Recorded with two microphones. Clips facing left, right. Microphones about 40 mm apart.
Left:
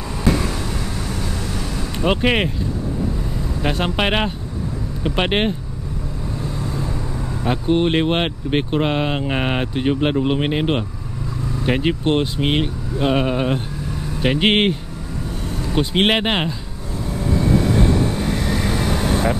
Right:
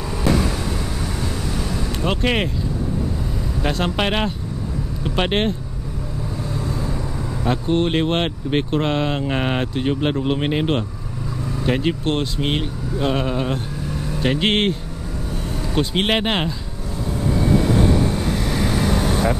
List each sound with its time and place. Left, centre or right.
2.0 s speech: centre
3.6 s speech: centre
7.4 s speech: centre
15.7 s speech: centre
17.3 s vehicle: centre